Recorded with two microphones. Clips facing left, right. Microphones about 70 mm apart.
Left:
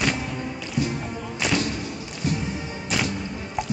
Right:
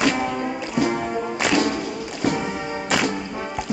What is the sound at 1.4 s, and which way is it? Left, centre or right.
Music, right.